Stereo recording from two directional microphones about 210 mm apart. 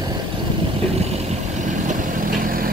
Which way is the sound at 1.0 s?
30° right (ahead or behind).